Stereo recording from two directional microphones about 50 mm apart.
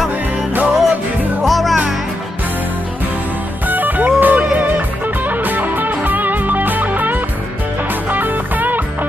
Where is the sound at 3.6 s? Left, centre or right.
Right.